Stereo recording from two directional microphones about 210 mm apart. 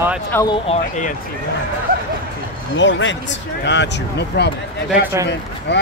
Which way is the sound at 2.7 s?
60° left (ahead or behind).